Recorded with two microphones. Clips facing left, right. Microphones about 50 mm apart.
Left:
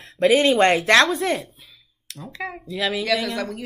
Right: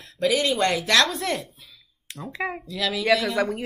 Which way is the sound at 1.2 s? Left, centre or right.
Centre.